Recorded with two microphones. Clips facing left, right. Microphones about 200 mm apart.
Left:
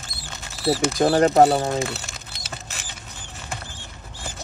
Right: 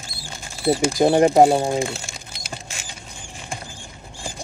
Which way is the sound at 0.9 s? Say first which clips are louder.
Right 2 dB; 15° right (ahead or behind).